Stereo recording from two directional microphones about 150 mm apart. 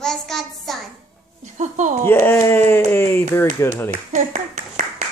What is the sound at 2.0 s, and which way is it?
Speech, 15° left (ahead or behind).